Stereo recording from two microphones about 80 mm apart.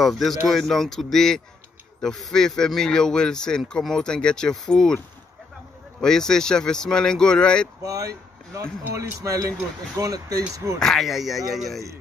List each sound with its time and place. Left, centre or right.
0.0 s a man's voice: centre
5.9 s a man's voice: centre
7.8 s a man's voice: right
10.8 s speech: centre